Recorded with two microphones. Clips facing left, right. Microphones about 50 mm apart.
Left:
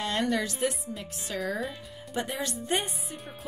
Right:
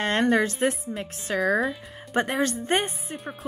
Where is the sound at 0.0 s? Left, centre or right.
Right.